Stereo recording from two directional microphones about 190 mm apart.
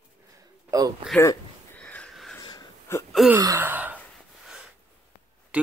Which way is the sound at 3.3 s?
15° right (ahead or behind).